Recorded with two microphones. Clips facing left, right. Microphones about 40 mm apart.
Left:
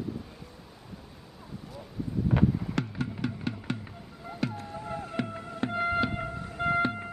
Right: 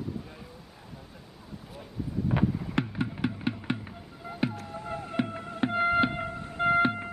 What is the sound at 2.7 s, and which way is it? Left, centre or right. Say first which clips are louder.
Music: right 2 dB; right.